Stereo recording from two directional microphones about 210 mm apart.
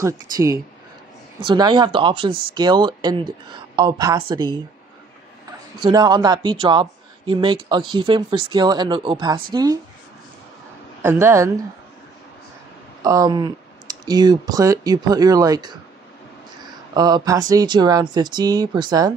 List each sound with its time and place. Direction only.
0.0 s speech: 15° right (ahead or behind)
5.8 s speech: 20° right (ahead or behind)
11.0 s speech: 10° right (ahead or behind)
13.0 s speech: 15° right (ahead or behind)
16.9 s speech: 20° right (ahead or behind)